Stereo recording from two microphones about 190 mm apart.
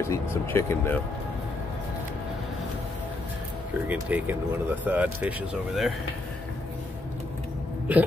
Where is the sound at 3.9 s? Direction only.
10° right (ahead or behind).